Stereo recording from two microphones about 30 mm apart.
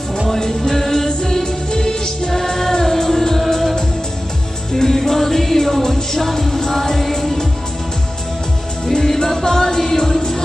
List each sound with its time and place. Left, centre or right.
0.3 s music: centre
4.7 s music: centre
9.0 s music: centre